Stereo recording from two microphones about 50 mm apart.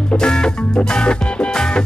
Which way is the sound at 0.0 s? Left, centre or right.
Centre.